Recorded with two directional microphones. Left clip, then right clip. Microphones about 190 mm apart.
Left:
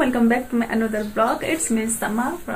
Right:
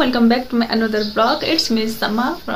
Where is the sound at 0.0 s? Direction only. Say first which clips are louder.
Right 3 dB; 15° right (ahead or behind).